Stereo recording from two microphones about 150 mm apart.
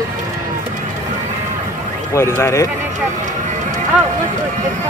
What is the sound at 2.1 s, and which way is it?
Speech, 20° left (ahead or behind).